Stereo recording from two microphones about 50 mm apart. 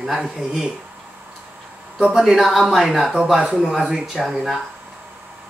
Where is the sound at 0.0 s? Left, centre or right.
Centre.